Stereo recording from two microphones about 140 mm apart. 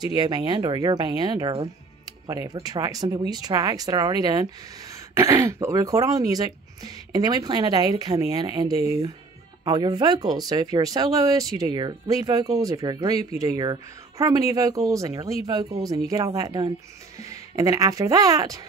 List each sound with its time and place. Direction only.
0.0 s speech: 30° right (ahead or behind)